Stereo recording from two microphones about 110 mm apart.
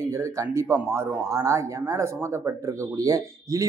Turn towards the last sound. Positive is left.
turn(degrees=-30)  # may be behind; listen again after turning